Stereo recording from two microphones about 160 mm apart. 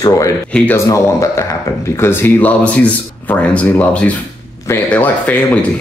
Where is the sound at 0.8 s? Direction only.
20° left (ahead or behind).